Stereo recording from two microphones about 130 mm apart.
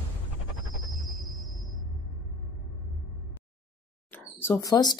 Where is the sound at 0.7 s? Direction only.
Centre (ahead or behind).